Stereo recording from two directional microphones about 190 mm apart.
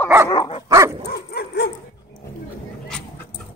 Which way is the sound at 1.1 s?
55° left (ahead or behind).